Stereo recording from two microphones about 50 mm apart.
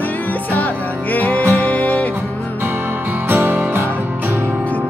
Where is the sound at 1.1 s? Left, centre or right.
Left.